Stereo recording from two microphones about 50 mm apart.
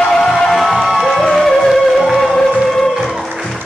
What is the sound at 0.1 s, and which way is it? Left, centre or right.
Music, centre.